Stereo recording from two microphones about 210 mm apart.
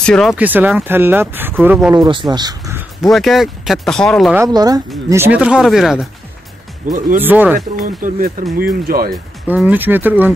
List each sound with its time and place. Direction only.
0.0 s speech: 5° left (ahead or behind)
1.9 s speech: 20° right (ahead or behind)
3.0 s speech: centre (ahead or behind)
4.4 s speech: 20° right (ahead or behind); by 6.0 s centre (ahead or behind)
6.8 s speech: 40° right (ahead or behind)
7.2 s speech: 10° right (ahead or behind)
7.7 s speech: 40° right (ahead or behind)
9.1 s speech: 5° right (ahead or behind)